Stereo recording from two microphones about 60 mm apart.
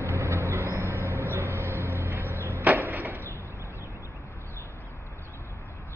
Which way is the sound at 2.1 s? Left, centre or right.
Right.